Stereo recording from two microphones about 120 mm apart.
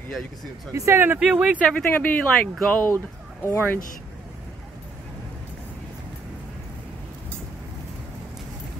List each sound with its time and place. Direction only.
0.7 s speech: 20° right (ahead or behind)
1.6 s speech: 10° left (ahead or behind)
2.5 s speech: centre (ahead or behind)
3.4 s speech: 20° left (ahead or behind)